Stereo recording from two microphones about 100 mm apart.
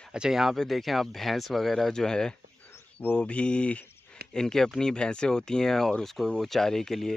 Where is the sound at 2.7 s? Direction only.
20° left (ahead or behind).